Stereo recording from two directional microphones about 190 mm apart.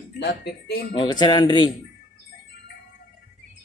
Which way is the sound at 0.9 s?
20° left (ahead or behind).